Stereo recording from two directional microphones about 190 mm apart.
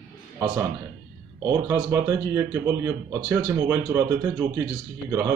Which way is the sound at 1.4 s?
15° right (ahead or behind).